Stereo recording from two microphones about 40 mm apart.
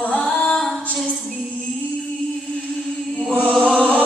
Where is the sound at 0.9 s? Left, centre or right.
Centre.